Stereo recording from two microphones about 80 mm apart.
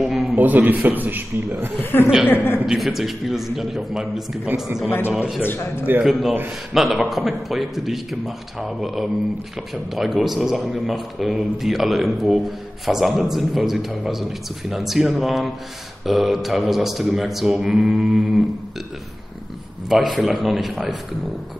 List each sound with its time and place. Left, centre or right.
0.0 s a sound: centre
0.4 s a man's voice: right
1.8 s a man's voice: left
2.6 s a man's voice: centre
5.4 s a man's voice: left
6.0 s a man's voice: centre
19.9 s a man's voice: centre